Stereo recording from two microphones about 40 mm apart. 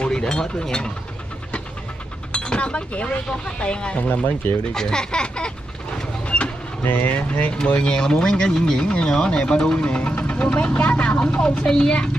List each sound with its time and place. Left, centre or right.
0.0 s speech: centre
2.3 s speech: left
4.0 s speech: left
4.7 s speech: centre
6.2 s vehicle: left
6.8 s speech: left
7.2 s speech: left
7.6 s speech: left
10.7 s speech: left
11.6 s speech: centre